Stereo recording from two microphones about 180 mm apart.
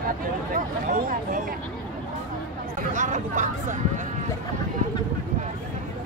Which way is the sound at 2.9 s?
45° right (ahead or behind).